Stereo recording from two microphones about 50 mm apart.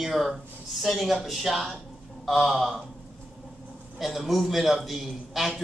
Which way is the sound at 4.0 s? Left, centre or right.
Centre.